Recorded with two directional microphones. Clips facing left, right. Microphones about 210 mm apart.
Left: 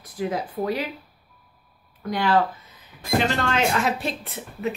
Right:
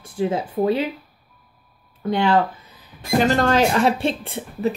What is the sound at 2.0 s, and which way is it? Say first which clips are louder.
Speech: right 4 dB; 25° right (ahead or behind).